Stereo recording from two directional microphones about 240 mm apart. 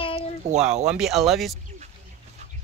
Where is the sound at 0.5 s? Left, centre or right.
Right.